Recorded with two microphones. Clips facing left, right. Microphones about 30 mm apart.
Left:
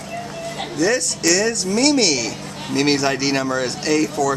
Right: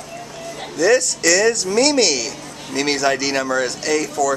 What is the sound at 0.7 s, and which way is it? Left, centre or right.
A man's voice, centre.